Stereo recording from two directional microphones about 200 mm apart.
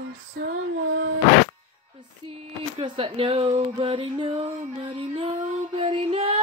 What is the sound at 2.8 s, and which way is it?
Speech, 25° right (ahead or behind).